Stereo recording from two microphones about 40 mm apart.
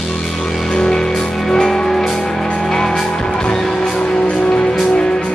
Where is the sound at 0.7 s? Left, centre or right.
Centre.